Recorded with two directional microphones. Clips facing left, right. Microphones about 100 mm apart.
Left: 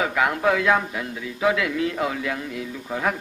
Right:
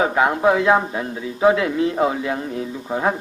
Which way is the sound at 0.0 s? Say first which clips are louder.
Right 4 dB; 30° right (ahead or behind).